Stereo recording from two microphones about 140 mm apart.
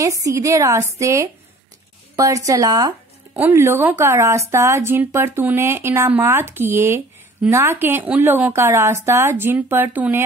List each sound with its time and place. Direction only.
0.0 s a woman's voice: 25° right (ahead or behind)